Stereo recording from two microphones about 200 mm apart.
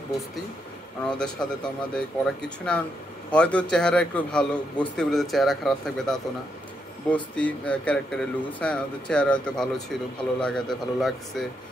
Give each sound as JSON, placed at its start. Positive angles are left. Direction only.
{"t": 1.1, "sound": "speech", "side_deg": 5}